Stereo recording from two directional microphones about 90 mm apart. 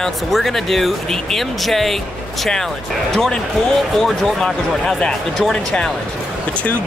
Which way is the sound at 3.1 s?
Centre (ahead or behind).